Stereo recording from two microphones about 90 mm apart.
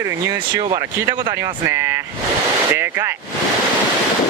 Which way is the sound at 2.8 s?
30° right (ahead or behind).